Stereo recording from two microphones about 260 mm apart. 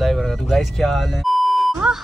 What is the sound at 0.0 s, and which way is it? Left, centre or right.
Speech, centre.